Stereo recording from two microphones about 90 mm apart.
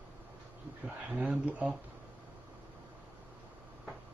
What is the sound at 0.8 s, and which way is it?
Speech, 15° right (ahead or behind).